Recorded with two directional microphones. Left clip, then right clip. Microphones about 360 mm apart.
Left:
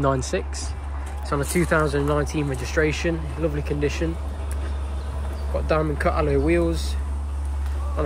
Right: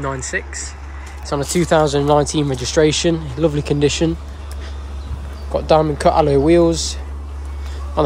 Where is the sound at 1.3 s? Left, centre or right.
Centre.